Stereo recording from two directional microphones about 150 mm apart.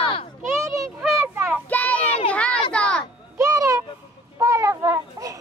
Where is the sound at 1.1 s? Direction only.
15° right (ahead or behind).